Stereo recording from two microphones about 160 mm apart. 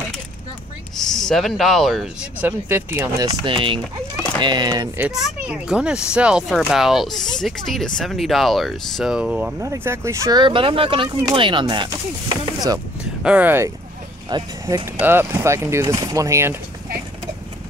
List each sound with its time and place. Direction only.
0.9 s speech: 5° left (ahead or behind)
2.4 s speech: 15° right (ahead or behind)
4.9 s speech: 10° right (ahead or behind)
9.6 s speech: 20° right (ahead or behind)
13.2 s speech: 10° right (ahead or behind)
14.3 s speech: 25° right (ahead or behind)
15.0 s speech: 15° right (ahead or behind)